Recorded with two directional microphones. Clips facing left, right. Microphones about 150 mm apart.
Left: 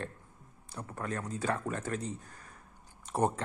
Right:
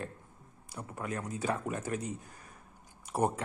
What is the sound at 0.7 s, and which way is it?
Speech, 10° right (ahead or behind).